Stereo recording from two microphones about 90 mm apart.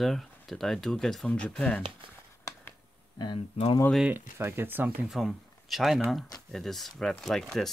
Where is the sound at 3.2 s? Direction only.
65° left (ahead or behind).